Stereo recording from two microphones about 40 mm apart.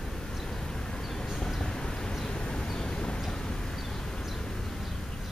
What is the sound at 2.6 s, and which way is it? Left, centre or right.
Vehicle, centre.